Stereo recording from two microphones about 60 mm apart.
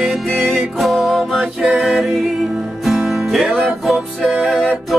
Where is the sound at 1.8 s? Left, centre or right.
Centre.